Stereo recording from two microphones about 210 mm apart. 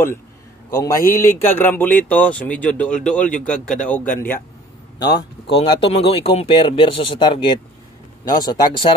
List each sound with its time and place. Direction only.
0.7 s speech: 15° left (ahead or behind)
4.9 s speech: 20° left (ahead or behind)